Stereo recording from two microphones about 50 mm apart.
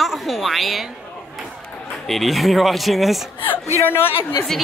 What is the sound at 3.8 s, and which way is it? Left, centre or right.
Speech, left.